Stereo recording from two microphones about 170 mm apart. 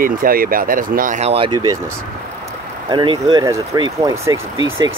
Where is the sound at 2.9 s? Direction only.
25° right (ahead or behind).